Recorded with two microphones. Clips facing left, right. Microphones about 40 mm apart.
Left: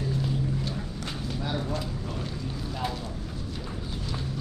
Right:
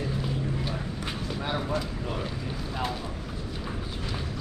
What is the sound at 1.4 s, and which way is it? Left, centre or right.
Speech, right.